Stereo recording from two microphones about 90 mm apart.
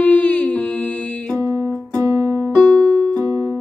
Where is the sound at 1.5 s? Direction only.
30° right (ahead or behind).